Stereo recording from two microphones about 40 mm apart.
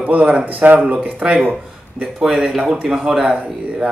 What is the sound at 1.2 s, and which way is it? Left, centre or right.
Speech, centre.